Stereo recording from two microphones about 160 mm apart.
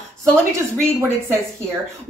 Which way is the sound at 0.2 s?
15° right (ahead or behind).